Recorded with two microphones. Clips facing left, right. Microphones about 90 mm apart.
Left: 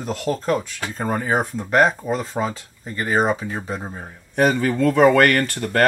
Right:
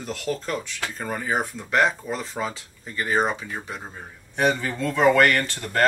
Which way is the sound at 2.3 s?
30° left (ahead or behind).